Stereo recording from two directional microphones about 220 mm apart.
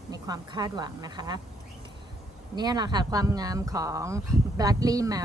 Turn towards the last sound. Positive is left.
turn(degrees=-15)  # may be behind; listen again after turning